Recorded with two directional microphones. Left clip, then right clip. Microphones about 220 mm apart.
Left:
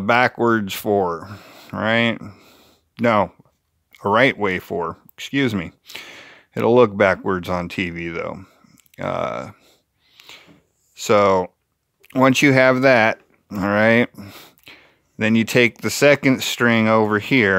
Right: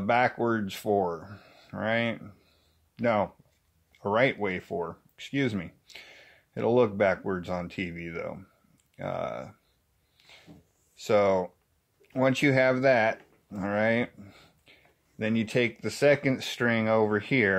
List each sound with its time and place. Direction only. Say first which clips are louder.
0.0 s speech: left 8 dB; 40° left (ahead or behind)
10.1 s a sound: left 12 dB; 45° left (ahead or behind)
11.0 s speech: left 8 dB; 45° left (ahead or behind)